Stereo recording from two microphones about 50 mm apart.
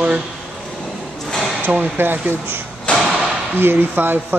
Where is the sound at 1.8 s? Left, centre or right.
Right.